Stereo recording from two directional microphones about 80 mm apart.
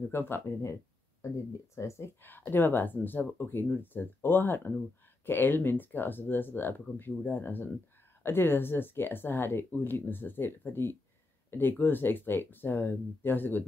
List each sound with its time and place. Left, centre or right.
0.1 s speech: left
2.2 s speech: left